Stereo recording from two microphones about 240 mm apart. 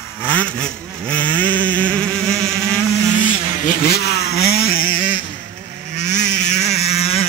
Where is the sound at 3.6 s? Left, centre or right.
Left.